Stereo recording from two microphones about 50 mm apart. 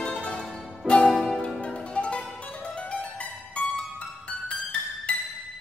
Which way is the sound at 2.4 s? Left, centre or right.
Centre.